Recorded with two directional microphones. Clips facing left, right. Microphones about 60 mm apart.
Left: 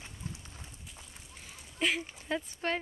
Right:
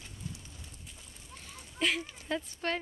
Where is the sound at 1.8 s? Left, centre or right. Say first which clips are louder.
Even; centre.